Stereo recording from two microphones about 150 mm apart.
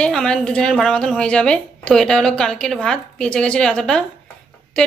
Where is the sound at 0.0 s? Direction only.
5° left (ahead or behind).